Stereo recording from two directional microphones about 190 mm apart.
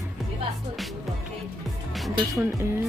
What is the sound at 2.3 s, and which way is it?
Speech, 15° right (ahead or behind).